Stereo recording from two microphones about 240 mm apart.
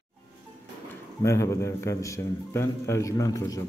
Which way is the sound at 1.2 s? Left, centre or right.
Centre.